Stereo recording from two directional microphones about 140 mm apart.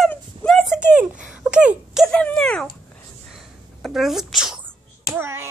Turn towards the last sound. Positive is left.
turn(degrees=-15)  # may be behind; listen again after turning